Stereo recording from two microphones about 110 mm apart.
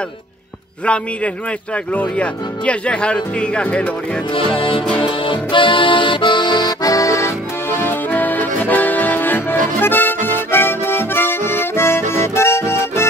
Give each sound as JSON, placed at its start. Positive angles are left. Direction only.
{"t": 0.8, "sound": "speech", "side_deg": 10}
{"t": 4.3, "sound": "music", "side_deg": 50}
{"t": 5.0, "sound": "accordion", "side_deg": 45}